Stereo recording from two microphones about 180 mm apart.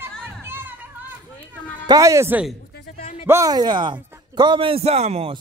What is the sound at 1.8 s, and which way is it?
A man's voice, 20° right (ahead or behind).